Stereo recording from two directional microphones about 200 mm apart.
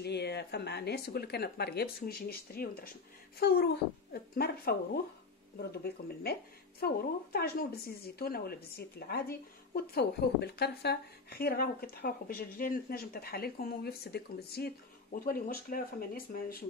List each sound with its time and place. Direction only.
0.0 s a woman's voice: 55° left (ahead or behind)